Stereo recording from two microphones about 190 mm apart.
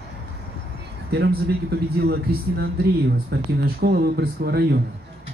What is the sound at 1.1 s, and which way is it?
A man's voice, 60° right (ahead or behind).